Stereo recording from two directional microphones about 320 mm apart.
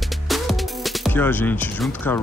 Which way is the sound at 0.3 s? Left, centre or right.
Centre.